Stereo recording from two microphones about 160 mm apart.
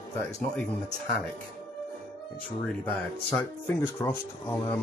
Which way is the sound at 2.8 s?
10° left (ahead or behind).